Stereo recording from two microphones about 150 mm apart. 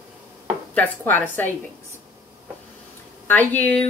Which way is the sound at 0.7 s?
10° left (ahead or behind).